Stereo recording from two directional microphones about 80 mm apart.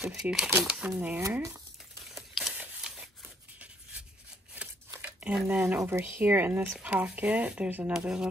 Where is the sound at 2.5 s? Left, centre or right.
Centre.